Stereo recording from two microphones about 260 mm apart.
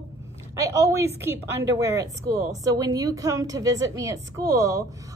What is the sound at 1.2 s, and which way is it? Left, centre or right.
A woman's voice, centre.